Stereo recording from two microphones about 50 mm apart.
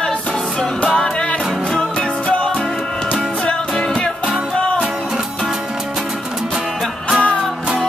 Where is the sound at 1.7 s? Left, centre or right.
Left.